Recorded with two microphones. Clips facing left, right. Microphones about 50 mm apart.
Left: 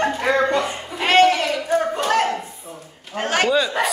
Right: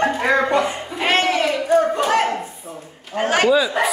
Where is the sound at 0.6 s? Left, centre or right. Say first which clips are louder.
Right 3 dB; centre.